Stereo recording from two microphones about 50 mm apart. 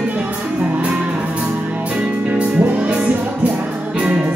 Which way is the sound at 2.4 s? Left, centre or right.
Right.